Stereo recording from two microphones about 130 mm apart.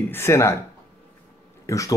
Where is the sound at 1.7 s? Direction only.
25° left (ahead or behind).